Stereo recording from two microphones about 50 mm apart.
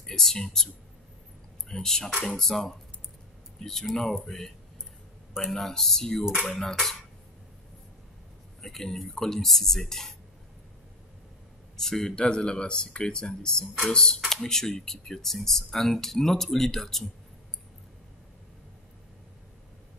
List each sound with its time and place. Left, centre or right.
0.0 s speech: centre
1.7 s speech: centre
5.3 s speech: centre
8.5 s speech: centre
11.7 s speech: centre